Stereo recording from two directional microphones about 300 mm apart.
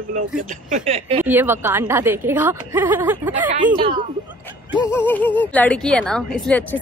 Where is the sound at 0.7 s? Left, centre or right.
Right.